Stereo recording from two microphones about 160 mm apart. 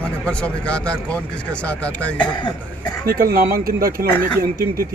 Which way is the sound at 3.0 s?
65° right (ahead or behind).